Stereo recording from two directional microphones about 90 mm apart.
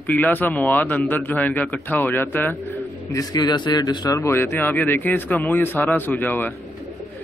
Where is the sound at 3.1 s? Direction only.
50° left (ahead or behind).